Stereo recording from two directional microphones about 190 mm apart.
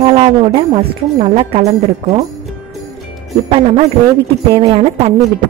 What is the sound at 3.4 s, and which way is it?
A woman's voice, 30° right (ahead or behind).